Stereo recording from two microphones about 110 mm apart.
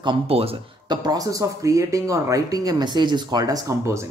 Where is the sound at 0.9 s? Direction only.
40° right (ahead or behind).